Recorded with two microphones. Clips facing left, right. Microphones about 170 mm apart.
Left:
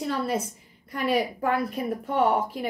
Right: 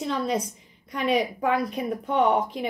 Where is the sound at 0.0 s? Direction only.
5° left (ahead or behind).